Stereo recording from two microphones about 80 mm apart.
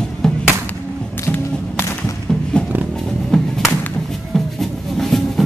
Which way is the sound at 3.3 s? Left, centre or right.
Centre.